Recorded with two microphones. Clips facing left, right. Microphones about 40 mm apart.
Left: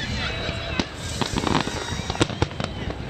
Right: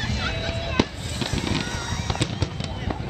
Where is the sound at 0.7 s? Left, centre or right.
Centre.